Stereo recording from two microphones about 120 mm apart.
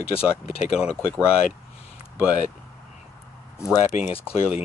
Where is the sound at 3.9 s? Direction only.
90° left.